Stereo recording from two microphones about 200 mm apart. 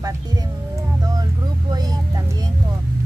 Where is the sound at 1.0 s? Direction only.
20° right (ahead or behind).